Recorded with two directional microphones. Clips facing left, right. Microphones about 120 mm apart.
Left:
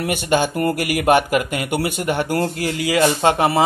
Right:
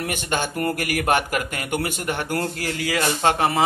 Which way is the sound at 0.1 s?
15° left (ahead or behind).